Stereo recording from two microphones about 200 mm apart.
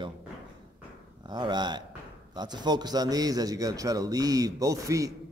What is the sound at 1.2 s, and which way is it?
Speech, 20° right (ahead or behind).